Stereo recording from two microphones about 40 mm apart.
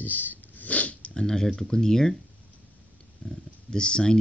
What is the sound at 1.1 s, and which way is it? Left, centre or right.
Speech, centre.